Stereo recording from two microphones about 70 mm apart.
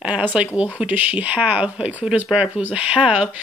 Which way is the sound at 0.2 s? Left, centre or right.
Centre.